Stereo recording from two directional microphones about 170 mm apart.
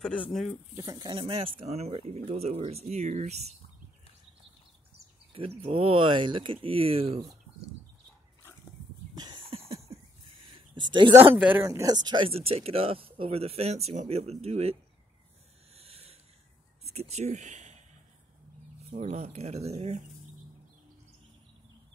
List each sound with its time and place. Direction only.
0.0 s speech: 5° left (ahead or behind)
0.7 s speech: 20° right (ahead or behind); by 3.3 s 40° right (ahead or behind)
5.3 s speech: 35° right (ahead or behind)
9.1 s a sound: 25° right (ahead or behind)
10.7 s speech: 30° right (ahead or behind)
11.3 s speech: 10° right (ahead or behind); by 14.8 s 35° right (ahead or behind)
15.7 s a sound: 35° right (ahead or behind)
16.9 s speech: 40° right (ahead or behind)
18.9 s speech: 40° right (ahead or behind)